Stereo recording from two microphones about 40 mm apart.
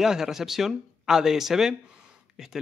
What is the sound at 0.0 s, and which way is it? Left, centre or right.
Speech, centre.